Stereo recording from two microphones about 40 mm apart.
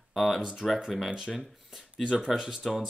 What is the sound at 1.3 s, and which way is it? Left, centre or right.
Speech, centre.